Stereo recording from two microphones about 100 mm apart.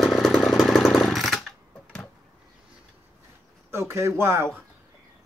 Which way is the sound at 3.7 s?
25° right (ahead or behind).